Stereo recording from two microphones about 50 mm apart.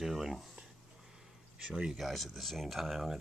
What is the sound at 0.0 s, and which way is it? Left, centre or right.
Speech, centre.